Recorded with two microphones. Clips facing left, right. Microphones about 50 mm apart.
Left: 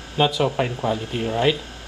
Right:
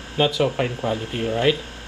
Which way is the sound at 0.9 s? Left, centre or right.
Right.